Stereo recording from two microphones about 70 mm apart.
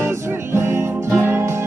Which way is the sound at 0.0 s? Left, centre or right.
Right.